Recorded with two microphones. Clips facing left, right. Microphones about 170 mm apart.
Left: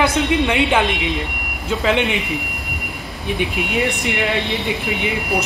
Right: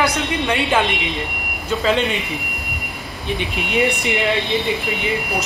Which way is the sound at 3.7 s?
Centre (ahead or behind).